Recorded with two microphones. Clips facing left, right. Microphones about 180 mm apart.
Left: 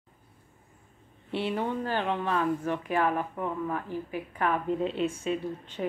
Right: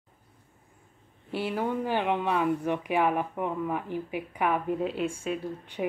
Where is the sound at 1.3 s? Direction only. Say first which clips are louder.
Even; 5° right (ahead or behind).